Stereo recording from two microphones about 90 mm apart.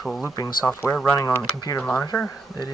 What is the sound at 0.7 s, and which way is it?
Speech, 20° left (ahead or behind).